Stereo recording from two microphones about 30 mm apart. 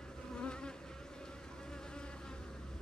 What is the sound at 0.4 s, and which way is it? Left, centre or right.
Bee, left.